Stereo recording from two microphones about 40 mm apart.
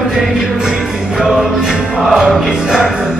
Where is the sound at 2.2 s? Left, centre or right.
Centre.